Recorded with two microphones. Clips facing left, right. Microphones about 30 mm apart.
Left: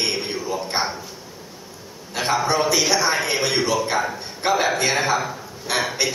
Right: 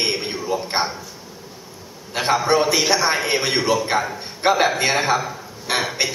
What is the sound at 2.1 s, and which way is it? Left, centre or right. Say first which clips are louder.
A man's voice: right 3 dB; centre.